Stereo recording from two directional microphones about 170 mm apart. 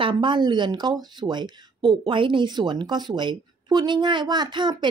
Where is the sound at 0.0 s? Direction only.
30° right (ahead or behind).